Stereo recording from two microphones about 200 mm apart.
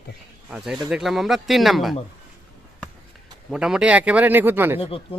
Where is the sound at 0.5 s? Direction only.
Centre (ahead or behind).